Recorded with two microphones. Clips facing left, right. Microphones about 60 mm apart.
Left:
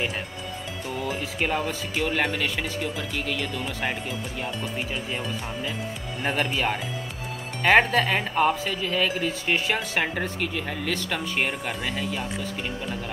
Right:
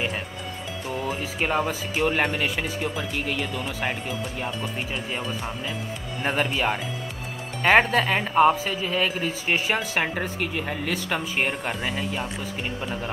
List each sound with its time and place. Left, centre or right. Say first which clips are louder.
1.2 s a woman's voice: right 3 dB; centre
12.2 s speech: even; right